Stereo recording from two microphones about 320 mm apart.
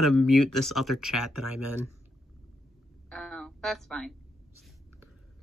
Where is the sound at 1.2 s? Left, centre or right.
Left.